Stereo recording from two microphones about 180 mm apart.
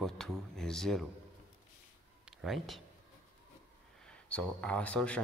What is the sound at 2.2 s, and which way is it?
Speech, centre (ahead or behind).